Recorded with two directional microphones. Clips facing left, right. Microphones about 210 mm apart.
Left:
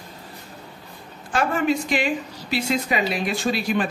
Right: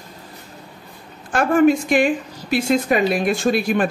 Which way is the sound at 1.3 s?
50° right (ahead or behind).